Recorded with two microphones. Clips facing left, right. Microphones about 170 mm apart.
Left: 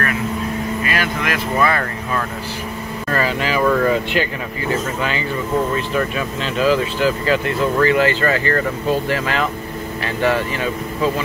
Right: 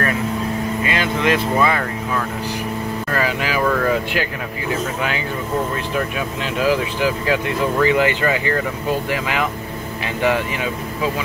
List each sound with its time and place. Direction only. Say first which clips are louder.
0.8 s speech: right 6 dB; 20° right (ahead or behind)
3.2 s speech: left 2 dB; 5° right (ahead or behind)
5.9 s speech: left 2 dB; 10° right (ahead or behind)